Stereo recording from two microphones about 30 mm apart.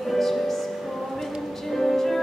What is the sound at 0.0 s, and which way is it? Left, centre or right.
Music, centre.